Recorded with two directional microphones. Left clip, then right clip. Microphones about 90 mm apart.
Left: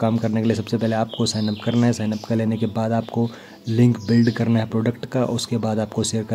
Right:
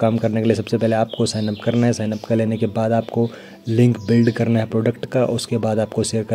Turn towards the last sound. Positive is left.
turn(degrees=-20)  # may be behind; listen again after turning